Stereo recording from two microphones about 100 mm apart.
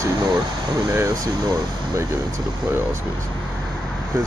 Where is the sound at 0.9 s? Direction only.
30° right (ahead or behind).